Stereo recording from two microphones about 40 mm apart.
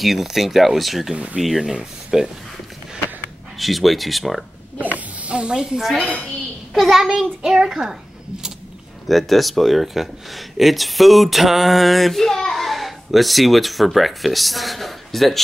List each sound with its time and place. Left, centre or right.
0.0 s speech: centre
1.1 s speech: right
1.4 s speech: centre
1.7 s a child's voice: centre
3.5 s speech: centre
4.9 s snake: right
5.8 s a child's voice: centre
9.0 s speech: centre